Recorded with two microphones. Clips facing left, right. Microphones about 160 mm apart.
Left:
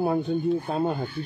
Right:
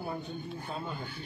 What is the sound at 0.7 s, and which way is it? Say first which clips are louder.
Speech: left 13 dB; 60° left (ahead or behind).